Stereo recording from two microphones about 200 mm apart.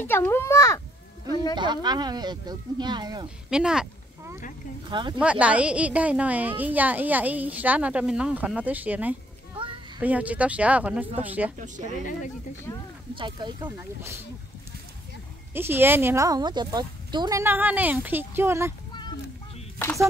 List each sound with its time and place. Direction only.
0.0 s a child's voice: 10° left (ahead or behind)
1.5 s speech: 20° right (ahead or behind)
3.4 s a sound: 5° right (ahead or behind)
4.8 s speech: 25° right (ahead or behind)
5.2 s a woman's voice: 5° right (ahead or behind)
11.5 s speech: 40° right (ahead or behind)
12.7 s a child's voice: 15° left (ahead or behind)
13.1 s speech: 25° right (ahead or behind)
13.7 s a woman's voice: 15° right (ahead or behind)
15.5 s a woman's voice: 10° right (ahead or behind)